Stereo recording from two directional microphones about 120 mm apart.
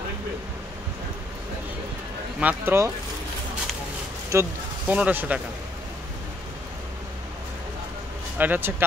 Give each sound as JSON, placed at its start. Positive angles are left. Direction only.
{"t": 2.4, "sound": "speech", "side_deg": -20}
{"t": 4.3, "sound": "speech", "side_deg": -20}
{"t": 8.4, "sound": "speech", "side_deg": -15}